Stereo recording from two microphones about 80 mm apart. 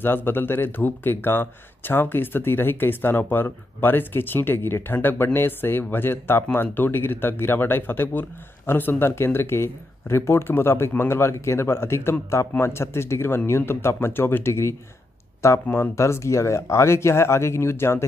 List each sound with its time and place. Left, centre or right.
0.0 s speech: left